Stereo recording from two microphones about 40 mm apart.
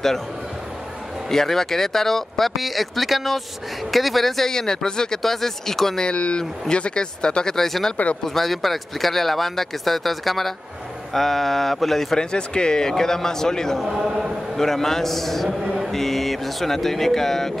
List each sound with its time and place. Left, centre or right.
1.3 s a man's voice: centre
6.0 s speech: left
7.5 s a man's voice: centre
12.2 s a man's voice: left
13.8 s a man's voice: centre
14.6 s a man's voice: centre
15.6 s mantra: centre
15.9 s a man's voice: centre